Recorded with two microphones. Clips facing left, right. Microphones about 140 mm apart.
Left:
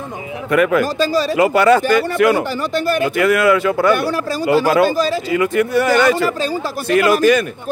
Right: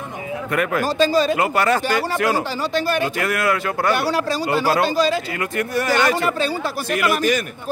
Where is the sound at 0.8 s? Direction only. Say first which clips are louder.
Even; 45° left (ahead or behind).